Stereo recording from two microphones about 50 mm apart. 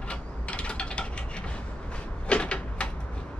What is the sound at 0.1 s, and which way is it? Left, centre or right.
Mechanisms, left.